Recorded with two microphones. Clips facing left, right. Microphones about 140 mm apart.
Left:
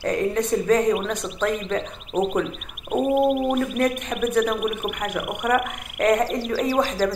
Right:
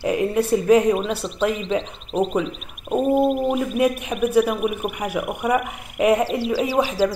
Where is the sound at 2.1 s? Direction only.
5° left (ahead or behind).